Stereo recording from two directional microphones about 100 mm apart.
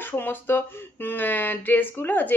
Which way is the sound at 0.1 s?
20° left (ahead or behind).